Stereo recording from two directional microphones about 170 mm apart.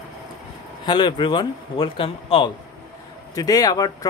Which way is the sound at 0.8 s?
30° left (ahead or behind).